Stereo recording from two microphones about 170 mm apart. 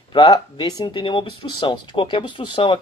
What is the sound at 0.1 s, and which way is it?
Speech, 30° left (ahead or behind).